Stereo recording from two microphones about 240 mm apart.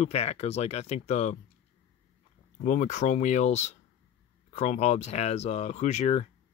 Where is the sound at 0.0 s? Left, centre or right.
Left.